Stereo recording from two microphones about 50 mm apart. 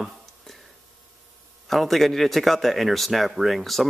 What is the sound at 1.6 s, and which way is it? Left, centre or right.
Speech, centre.